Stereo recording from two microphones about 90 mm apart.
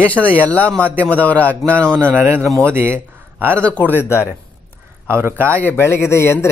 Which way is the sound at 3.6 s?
20° left (ahead or behind).